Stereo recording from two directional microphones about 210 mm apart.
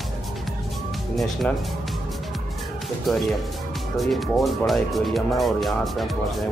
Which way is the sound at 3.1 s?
Centre (ahead or behind).